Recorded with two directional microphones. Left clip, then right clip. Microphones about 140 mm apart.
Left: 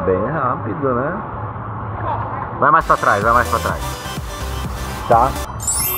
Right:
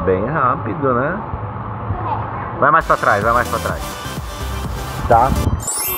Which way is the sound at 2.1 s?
5° left (ahead or behind).